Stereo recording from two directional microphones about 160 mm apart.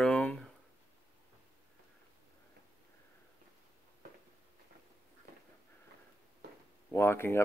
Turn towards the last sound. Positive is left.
turn(degrees=15)  # may be behind; listen again after turning